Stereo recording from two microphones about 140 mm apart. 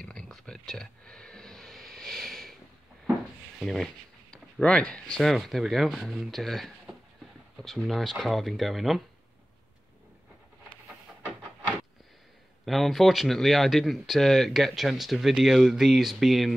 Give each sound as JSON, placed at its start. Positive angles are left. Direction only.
{"t": 0.0, "sound": "a sound", "side_deg": 5}
{"t": 3.5, "sound": "speech", "side_deg": 0}
{"t": 12.6, "sound": "speech", "side_deg": 0}